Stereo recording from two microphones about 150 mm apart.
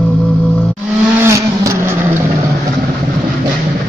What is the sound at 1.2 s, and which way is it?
Vehicle, 20° right (ahead or behind).